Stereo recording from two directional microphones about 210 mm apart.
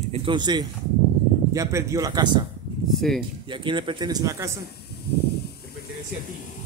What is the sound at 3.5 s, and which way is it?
A man's voice, 25° right (ahead or behind).